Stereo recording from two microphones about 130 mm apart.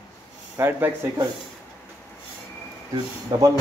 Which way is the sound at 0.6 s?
15° right (ahead or behind).